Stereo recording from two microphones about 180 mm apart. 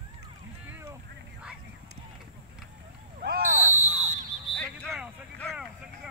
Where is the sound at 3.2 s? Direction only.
50° right (ahead or behind).